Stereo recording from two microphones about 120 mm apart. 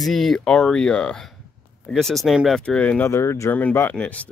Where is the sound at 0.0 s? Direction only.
Centre (ahead or behind).